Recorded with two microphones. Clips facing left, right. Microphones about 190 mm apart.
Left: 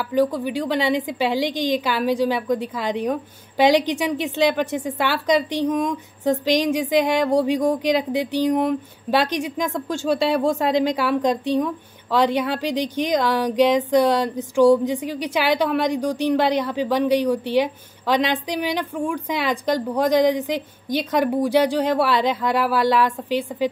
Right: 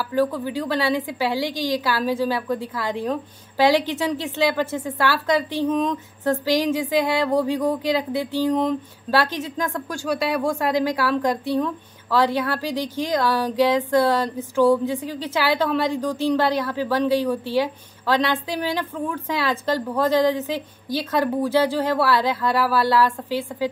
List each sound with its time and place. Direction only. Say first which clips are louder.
0.1 s a woman's voice: left 2 dB; 15° left (ahead or behind)